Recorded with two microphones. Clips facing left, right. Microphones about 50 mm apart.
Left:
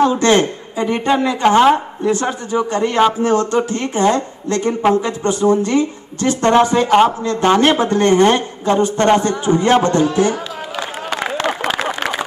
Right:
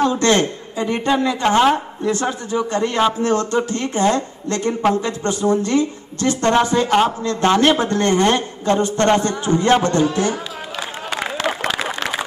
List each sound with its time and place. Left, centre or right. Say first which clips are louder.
0.0 s a man's voice: left 3 dB; centre
1.3 s speech: left 5 dB; centre